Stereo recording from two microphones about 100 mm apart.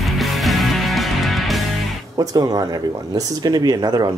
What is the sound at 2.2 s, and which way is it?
Speech, 40° right (ahead or behind).